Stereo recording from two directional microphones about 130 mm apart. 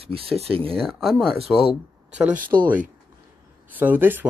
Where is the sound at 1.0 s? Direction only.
5° left (ahead or behind).